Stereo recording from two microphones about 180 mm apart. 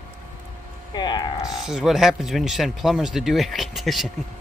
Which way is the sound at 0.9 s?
25° left (ahead or behind).